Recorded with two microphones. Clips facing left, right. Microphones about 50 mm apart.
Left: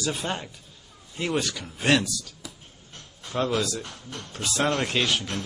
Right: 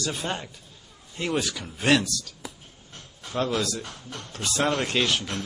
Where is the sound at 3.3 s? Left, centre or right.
Centre.